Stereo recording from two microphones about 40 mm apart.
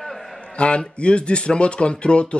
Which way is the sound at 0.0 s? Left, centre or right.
Centre.